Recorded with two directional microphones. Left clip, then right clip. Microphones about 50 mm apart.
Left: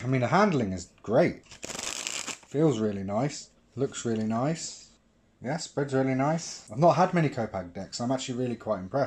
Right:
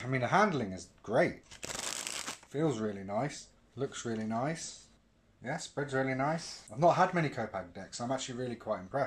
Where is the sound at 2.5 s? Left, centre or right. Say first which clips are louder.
Left 8 dB; left.